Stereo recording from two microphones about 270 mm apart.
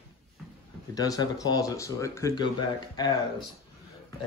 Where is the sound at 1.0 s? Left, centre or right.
Centre.